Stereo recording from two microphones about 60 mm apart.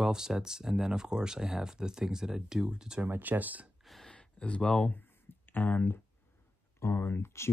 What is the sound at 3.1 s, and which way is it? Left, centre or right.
Speech, right.